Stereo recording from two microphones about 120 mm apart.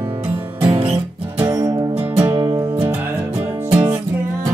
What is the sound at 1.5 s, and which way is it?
Music, 35° right (ahead or behind).